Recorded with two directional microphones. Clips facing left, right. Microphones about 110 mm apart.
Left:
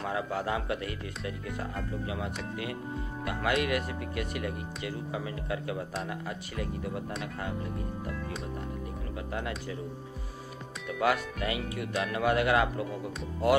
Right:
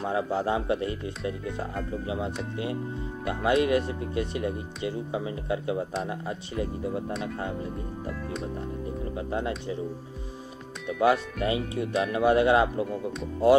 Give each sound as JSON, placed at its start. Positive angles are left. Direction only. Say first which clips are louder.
{"t": 0.0, "sound": "speech", "louder": "right 5 dB", "side_deg": -25}
{"t": 8.1, "sound": "music", "louder": "right 4 dB", "side_deg": 0}
{"t": 11.0, "sound": "speech", "louder": "right 5 dB", "side_deg": -25}